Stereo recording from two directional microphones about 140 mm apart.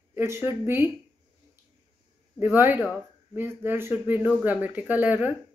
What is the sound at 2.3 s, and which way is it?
Speech, 15° right (ahead or behind).